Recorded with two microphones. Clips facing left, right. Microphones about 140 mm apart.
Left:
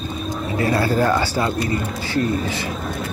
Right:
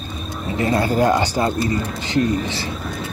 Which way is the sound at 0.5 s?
25° right (ahead or behind).